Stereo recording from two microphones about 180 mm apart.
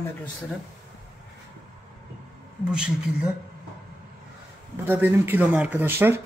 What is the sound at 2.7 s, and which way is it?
Speech, 5° right (ahead or behind).